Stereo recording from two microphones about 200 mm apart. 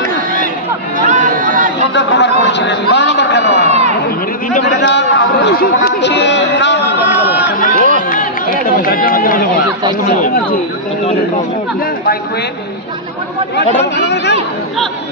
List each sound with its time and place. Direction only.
0.9 s chatter: 40° right (ahead or behind)
2.0 s speech: 60° left (ahead or behind)
2.4 s a sound: 60° left (ahead or behind)
3.6 s a sound: 30° right (ahead or behind)
4.6 s chatter: 60° left (ahead or behind)
7.5 s run: 45° left (ahead or behind)
10.1 s speech: 45° left (ahead or behind)
13.9 s a man's voice: 60° left (ahead or behind)